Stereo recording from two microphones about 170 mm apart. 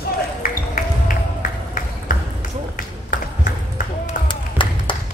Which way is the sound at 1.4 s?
50° left (ahead or behind).